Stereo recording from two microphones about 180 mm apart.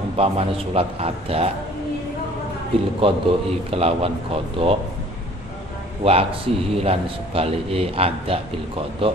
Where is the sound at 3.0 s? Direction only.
30° right (ahead or behind).